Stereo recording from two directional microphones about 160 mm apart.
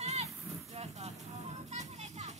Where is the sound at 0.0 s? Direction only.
40° right (ahead or behind).